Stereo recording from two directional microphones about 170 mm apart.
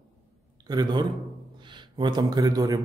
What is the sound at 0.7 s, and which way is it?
Speech, 25° right (ahead or behind).